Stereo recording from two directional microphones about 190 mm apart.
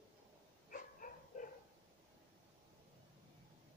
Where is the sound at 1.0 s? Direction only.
45° left (ahead or behind).